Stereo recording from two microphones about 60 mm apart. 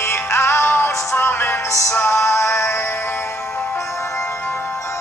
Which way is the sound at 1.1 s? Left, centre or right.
Left.